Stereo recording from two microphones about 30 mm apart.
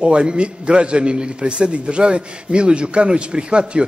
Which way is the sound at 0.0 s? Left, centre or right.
Right.